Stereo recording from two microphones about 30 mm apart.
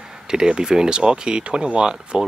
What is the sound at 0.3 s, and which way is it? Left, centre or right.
Speech, right.